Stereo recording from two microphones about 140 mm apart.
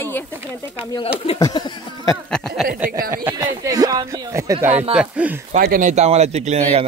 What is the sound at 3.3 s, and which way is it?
Speech, 25° right (ahead or behind).